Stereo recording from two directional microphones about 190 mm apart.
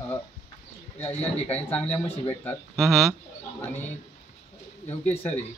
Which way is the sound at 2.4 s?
Centre (ahead or behind).